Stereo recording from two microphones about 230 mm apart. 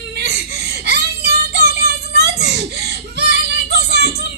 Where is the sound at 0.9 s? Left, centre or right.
Right.